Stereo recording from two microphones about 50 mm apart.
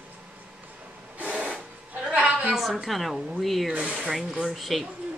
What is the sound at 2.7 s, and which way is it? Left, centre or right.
A woman's voice, centre.